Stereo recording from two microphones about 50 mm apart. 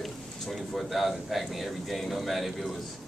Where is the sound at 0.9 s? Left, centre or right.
Centre.